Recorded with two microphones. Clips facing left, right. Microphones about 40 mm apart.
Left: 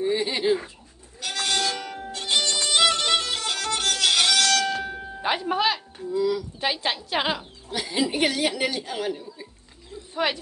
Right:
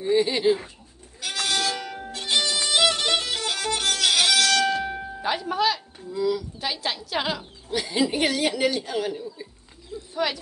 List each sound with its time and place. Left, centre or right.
0.0 s a woman's voice: centre
1.2 s music: centre
5.2 s speech: left
5.9 s a woman's voice: centre
6.6 s a woman's voice: left
7.7 s a woman's voice: centre
10.1 s speech: left